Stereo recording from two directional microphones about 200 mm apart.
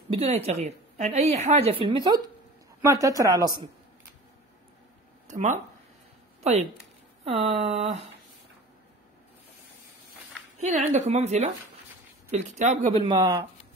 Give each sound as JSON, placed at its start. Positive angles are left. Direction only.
{"t": 0.1, "sound": "a woman's voice", "side_deg": -30}
{"t": 5.3, "sound": "a woman's voice", "side_deg": -40}
{"t": 7.2, "sound": "a woman's voice", "side_deg": -30}
{"t": 10.6, "sound": "a woman's voice", "side_deg": -35}
{"t": 13.0, "sound": "a woman's voice", "side_deg": -20}